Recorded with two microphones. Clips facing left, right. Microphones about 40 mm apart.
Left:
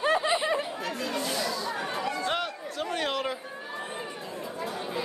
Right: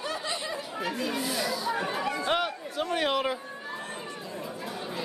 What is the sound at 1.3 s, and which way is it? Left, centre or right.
Chatter, centre.